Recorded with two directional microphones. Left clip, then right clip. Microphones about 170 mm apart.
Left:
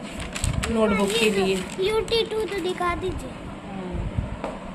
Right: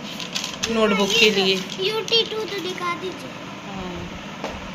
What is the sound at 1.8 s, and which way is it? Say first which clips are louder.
A child's voice: even; 55° left (ahead or behind).